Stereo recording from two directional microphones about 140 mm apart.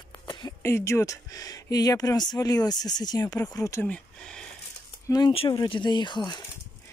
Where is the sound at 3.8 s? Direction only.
5° left (ahead or behind).